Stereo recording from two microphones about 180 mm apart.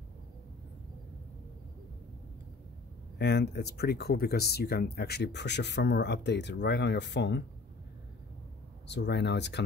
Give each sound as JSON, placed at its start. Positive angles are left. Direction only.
{"t": 3.2, "sound": "speech", "side_deg": 65}
{"t": 8.8, "sound": "speech", "side_deg": 75}